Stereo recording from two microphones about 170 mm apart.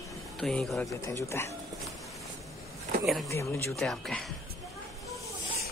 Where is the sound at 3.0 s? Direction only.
Centre (ahead or behind).